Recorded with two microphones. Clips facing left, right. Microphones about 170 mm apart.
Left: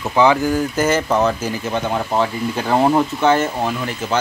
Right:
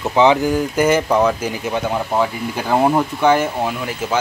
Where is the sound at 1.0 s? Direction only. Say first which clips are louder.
Right 1 dB; 5° left (ahead or behind).